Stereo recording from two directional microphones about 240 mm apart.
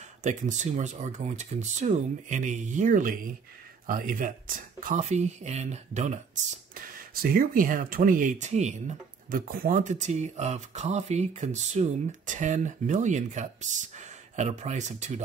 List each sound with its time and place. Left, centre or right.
0.2 s speech: right